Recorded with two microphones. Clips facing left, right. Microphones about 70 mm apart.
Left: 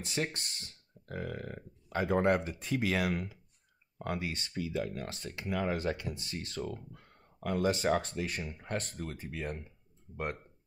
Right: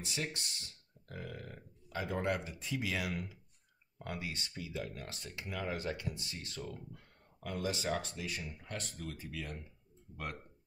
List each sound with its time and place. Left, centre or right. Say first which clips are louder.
0.0 s speech: left 5 dB; left